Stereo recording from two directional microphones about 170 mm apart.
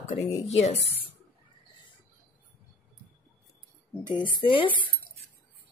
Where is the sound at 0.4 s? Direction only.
40° left (ahead or behind).